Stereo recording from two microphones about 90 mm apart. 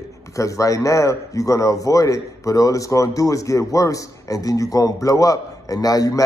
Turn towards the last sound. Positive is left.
turn(degrees=45)  # may be behind; listen again after turning